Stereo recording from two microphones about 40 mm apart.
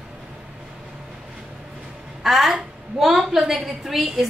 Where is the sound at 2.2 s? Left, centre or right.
Centre.